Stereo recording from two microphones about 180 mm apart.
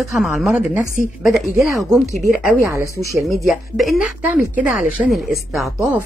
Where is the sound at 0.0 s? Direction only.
Centre (ahead or behind).